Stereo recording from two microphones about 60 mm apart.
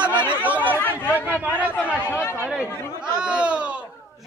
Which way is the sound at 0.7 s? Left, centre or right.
Left.